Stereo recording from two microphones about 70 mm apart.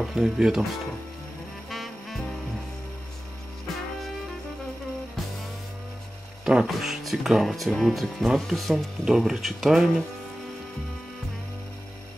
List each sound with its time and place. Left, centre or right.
0.0 s speech: centre
1.7 s music: centre
6.4 s speech: centre